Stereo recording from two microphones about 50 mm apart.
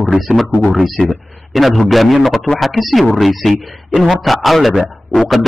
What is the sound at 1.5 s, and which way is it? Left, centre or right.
A man's voice, centre.